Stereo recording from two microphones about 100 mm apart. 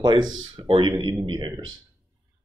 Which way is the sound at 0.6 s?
60° right (ahead or behind).